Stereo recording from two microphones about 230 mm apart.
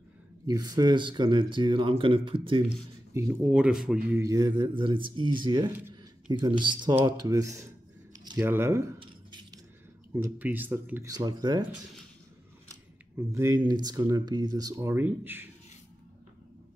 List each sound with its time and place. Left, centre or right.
0.5 s speech: centre
8.2 s a sound: centre
10.1 s speech: centre
13.3 s speech: centre